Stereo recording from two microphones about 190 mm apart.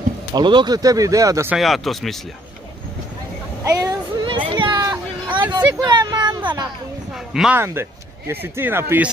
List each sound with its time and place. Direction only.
0.3 s speech: 25° right (ahead or behind)
1.6 s speech: centre (ahead or behind)
3.6 s a sound: 20° right (ahead or behind)
5.8 s speech: 20° right (ahead or behind)
7.3 s speech: 10° right (ahead or behind)